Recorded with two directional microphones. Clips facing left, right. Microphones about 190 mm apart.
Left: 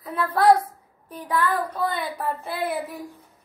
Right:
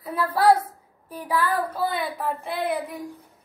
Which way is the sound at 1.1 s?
10° right (ahead or behind).